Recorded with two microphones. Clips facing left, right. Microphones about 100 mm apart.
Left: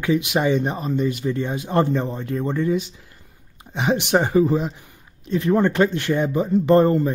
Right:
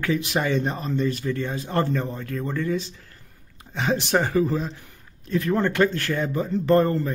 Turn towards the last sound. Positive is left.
turn(degrees=20)  # may be behind; listen again after turning